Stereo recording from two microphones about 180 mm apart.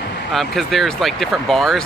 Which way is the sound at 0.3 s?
Centre (ahead or behind).